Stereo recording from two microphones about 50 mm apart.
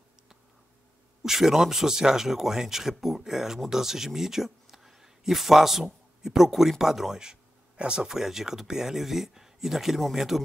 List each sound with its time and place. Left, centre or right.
1.2 s speech: centre
7.7 s speech: right
8.1 s speech: centre